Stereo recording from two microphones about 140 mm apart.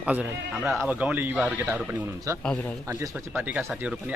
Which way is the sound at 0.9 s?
10° right (ahead or behind).